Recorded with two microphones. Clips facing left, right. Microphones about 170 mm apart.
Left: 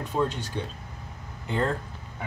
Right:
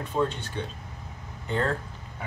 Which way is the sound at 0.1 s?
10° left (ahead or behind).